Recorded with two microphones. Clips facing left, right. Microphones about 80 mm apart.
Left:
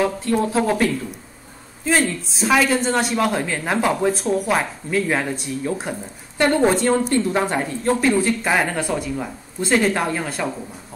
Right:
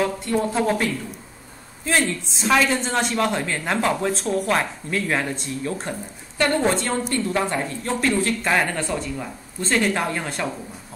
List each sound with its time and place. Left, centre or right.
0.3 s speech: centre
2.0 s speech: centre
7.1 s a woman's voice: left
7.8 s speech: centre